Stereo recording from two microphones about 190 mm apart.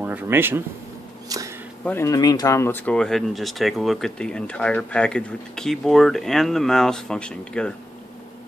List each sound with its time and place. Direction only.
0.0 s speech: 10° right (ahead or behind)
1.9 s speech: 15° left (ahead or behind)